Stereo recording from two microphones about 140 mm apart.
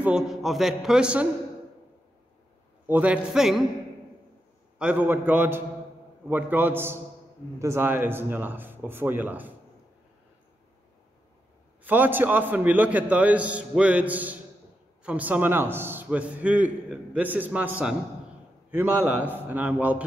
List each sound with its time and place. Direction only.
0.0 s a man's voice: 5° right (ahead or behind)
2.9 s a man's voice: 10° right (ahead or behind)
4.7 s a man's voice: 10° right (ahead or behind)
11.8 s a man's voice: 15° right (ahead or behind)